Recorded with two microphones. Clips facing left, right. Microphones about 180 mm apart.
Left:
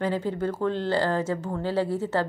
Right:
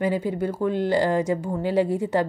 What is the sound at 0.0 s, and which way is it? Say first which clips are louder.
A woman's voice: right 2 dB; 10° right (ahead or behind).